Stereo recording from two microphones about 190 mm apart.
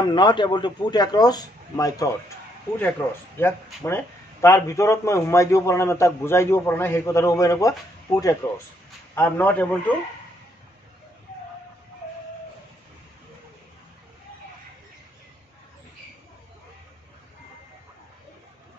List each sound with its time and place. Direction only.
0.0 s a man's voice: 25° left (ahead or behind); by 9.9 s 10° left (ahead or behind)